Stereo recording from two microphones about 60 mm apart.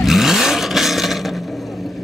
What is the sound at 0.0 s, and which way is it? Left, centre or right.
Vehicle, centre.